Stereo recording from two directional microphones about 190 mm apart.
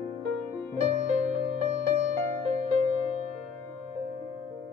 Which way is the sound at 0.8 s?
35° right (ahead or behind).